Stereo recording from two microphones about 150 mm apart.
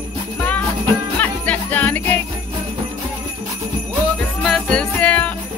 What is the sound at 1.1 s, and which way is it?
Jingle bell, 10° left (ahead or behind).